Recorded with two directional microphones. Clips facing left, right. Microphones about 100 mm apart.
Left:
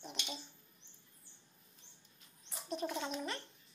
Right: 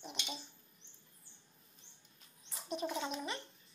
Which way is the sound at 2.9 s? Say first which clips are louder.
Even; 5° right (ahead or behind).